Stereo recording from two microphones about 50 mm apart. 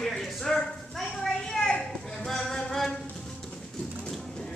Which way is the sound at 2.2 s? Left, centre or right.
Centre.